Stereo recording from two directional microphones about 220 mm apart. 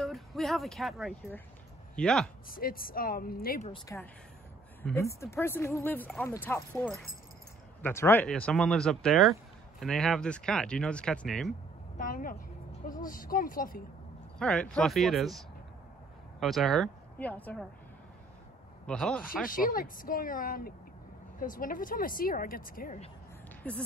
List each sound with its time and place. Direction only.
0.0 s speech: centre (ahead or behind)
2.5 s a woman's voice: 40° left (ahead or behind)
3.9 s speech: 10° left (ahead or behind)
12.0 s a woman's voice: 40° left (ahead or behind)
14.4 s speech: 5° left (ahead or behind)
18.9 s speech: 5° left (ahead or behind)
19.4 s a woman's voice: 40° left (ahead or behind)